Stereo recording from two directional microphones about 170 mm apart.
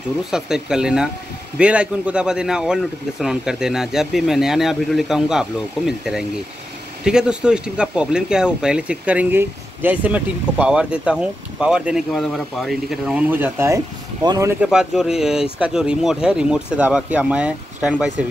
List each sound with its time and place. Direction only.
0.3 s speech: 5° right (ahead or behind); by 14.6 s 20° right (ahead or behind)
14.6 s speech: 5° right (ahead or behind)